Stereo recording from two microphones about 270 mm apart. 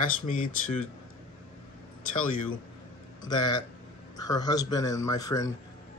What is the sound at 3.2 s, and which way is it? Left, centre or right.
Speech, centre.